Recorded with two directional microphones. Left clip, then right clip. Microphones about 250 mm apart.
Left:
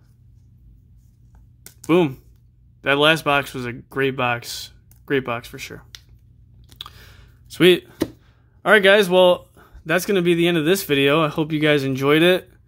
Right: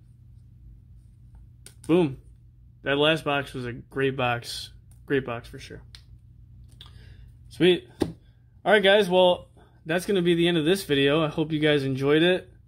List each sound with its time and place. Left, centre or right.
1.8 s speech: centre
6.8 s a sound: left
8.6 s speech: centre